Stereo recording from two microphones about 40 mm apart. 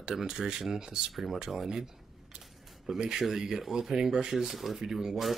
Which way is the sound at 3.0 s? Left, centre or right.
Centre.